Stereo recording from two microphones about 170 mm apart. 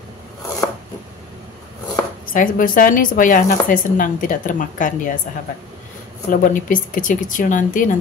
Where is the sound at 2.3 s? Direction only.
55° left (ahead or behind).